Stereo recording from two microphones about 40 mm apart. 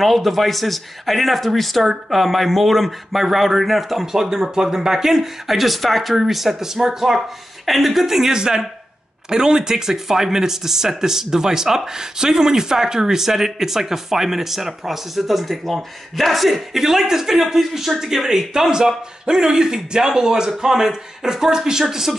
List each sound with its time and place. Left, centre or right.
0.0 s speech: centre